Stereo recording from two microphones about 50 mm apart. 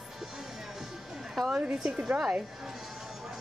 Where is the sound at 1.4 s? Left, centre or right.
Centre.